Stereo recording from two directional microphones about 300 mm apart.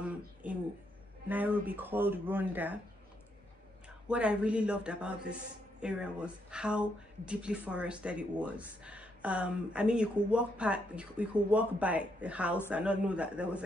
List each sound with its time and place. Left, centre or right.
1.3 s speech: centre
4.1 s speech: centre